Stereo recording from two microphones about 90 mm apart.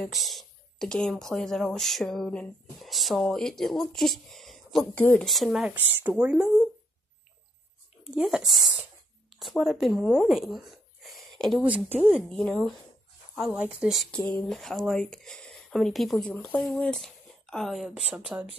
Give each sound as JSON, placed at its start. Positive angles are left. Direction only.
{"t": 0.0, "sound": "speech", "side_deg": 0}
{"t": 4.9, "sound": "speech", "side_deg": 15}
{"t": 5.2, "sound": "speech", "side_deg": 0}
{"t": 5.7, "sound": "speech", "side_deg": -20}
{"t": 8.0, "sound": "speech", "side_deg": -10}
{"t": 11.6, "sound": "speech", "side_deg": -15}
{"t": 12.3, "sound": "speech", "side_deg": 5}
{"t": 14.1, "sound": "speech", "side_deg": 10}
{"t": 16.3, "sound": "speech", "side_deg": 15}